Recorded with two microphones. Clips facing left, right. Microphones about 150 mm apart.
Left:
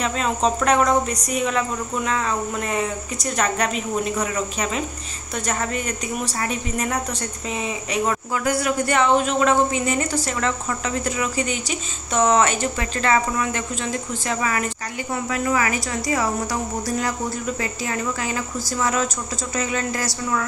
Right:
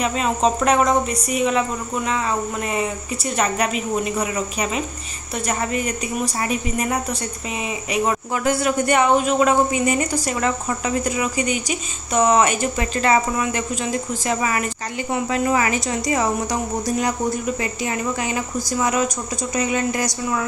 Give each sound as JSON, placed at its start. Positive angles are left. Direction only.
{"t": 0.0, "sound": "speech", "side_deg": -10}
{"t": 3.3, "sound": "speech", "side_deg": -10}
{"t": 6.2, "sound": "speech", "side_deg": -10}
{"t": 8.5, "sound": "a woman's voice", "side_deg": -20}
{"t": 9.1, "sound": "a woman's voice", "side_deg": -10}
{"t": 17.8, "sound": "speech", "side_deg": -15}